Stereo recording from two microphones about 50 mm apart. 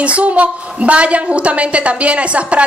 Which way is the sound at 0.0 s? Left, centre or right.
Right.